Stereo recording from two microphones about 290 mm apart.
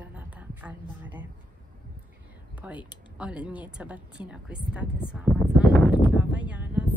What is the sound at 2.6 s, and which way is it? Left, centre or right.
Speech, centre.